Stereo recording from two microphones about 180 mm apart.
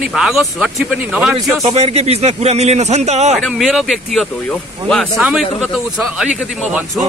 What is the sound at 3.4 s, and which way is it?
Speech, centre (ahead or behind).